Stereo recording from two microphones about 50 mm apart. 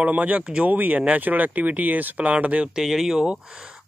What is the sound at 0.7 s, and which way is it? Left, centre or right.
Speech, right.